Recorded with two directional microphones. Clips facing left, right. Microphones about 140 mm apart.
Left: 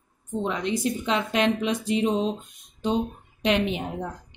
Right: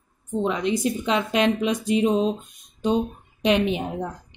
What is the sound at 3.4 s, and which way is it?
Speech, 20° right (ahead or behind).